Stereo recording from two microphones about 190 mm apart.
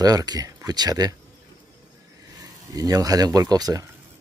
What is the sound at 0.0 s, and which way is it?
Speech, 20° right (ahead or behind).